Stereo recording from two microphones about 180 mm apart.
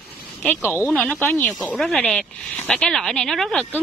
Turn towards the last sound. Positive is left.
turn(degrees=0)  # may be behind; listen again after turning